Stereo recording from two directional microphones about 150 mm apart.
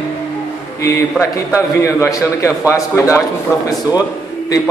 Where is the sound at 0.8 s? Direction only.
20° left (ahead or behind).